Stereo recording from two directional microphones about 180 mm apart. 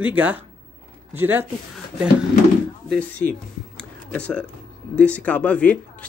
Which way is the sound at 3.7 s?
5° left (ahead or behind).